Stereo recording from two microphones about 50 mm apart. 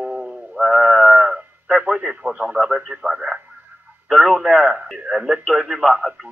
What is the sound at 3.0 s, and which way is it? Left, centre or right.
Speech, centre.